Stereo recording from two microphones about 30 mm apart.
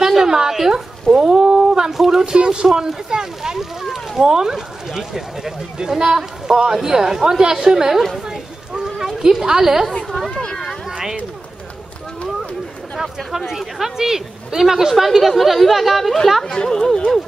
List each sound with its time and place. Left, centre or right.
0.2 s a sound: centre
1.9 s speech: centre
2.3 s speech: right
3.5 s speech: centre
4.2 s speech: centre
8.3 s sheep: centre
9.2 s speech: centre
9.9 s speech: centre
10.4 s speech: centre
13.5 s speech: centre
16.5 s speech: centre